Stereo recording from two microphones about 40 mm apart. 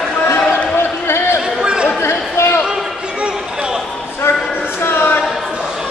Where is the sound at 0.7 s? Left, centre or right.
Left.